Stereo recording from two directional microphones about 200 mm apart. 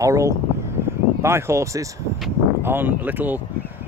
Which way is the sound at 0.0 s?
15° right (ahead or behind).